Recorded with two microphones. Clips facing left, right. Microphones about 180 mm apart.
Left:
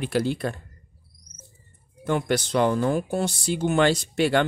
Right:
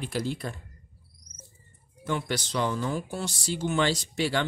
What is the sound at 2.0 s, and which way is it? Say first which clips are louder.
Speech: left 6 dB; 55° left (ahead or behind).